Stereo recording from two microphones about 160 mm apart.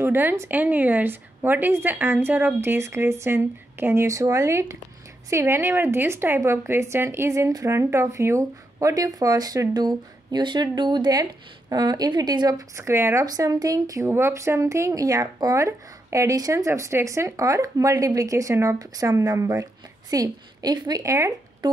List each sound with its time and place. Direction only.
0.0 s a woman's voice: 15° right (ahead or behind)